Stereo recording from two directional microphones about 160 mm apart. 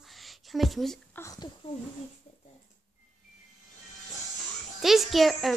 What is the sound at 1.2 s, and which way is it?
Speech, 20° left (ahead or behind).